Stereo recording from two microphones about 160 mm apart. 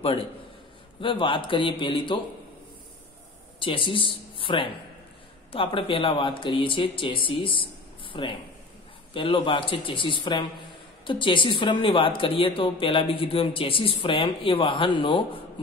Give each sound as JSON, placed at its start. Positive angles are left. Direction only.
{"t": 1.0, "sound": "a woman's voice", "side_deg": 30}
{"t": 3.6, "sound": "a woman's voice", "side_deg": 30}